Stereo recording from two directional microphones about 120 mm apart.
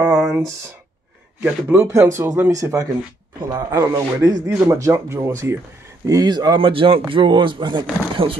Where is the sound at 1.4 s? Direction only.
10° right (ahead or behind).